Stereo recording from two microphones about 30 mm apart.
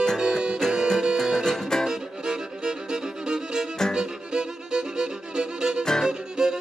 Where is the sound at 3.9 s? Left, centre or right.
Centre.